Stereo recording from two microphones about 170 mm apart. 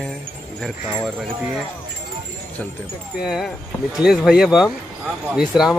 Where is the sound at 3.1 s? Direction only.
5° right (ahead or behind).